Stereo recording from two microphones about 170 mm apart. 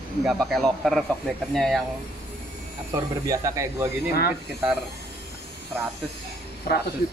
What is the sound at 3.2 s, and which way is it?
Speech, 20° right (ahead or behind).